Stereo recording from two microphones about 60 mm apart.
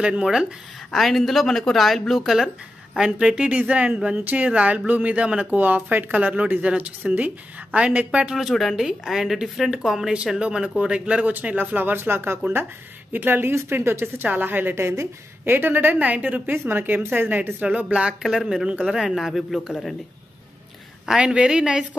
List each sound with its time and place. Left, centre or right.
0.0 s a woman's voice: centre
0.9 s a woman's voice: centre
5.9 s a woman's voice: right
8.4 s a woman's voice: centre; by 14.9 s right
14.9 s a woman's voice: right
15.5 s a woman's voice: right; by 18.1 s centre
18.2 s a woman's voice: centre
21.2 s a woman's voice: centre